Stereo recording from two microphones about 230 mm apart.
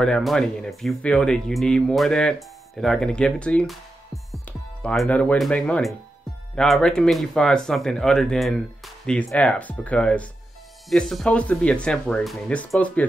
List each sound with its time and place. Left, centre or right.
0.0 s speech: centre